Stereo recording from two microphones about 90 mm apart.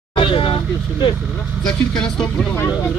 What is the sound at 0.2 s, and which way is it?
Vehicle, 75° left (ahead or behind).